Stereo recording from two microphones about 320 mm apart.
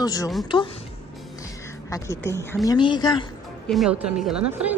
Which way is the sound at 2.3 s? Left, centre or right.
Centre.